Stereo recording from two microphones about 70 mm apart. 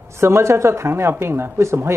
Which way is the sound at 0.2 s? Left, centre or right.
Right.